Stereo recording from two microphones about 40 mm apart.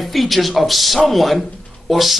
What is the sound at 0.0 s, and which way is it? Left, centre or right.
A woman's voice, centre.